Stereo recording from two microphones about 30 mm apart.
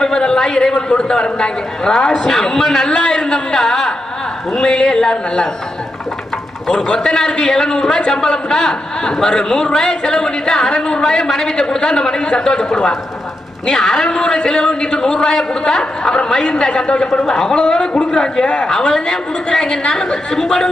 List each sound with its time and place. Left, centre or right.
0.0 s a man's voice: left
6.7 s a man's voice: left
18.7 s a woman's voice: centre